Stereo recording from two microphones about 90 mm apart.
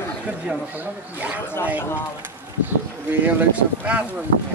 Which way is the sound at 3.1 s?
20° right (ahead or behind).